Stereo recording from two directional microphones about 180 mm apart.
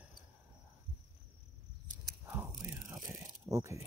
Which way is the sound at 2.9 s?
20° right (ahead or behind).